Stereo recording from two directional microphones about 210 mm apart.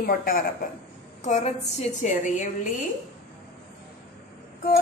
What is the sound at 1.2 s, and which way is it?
A woman's voice, 35° left (ahead or behind).